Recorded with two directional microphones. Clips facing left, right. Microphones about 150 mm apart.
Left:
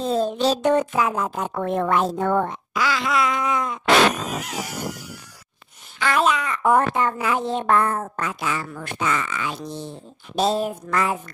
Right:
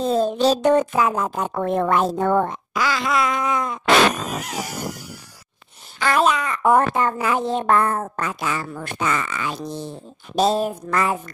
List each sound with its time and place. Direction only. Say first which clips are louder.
0.0 s a woman's voice: right 3 dB; 45° right (ahead or behind)
5.9 s a woman's voice: right 2 dB; 40° right (ahead or behind)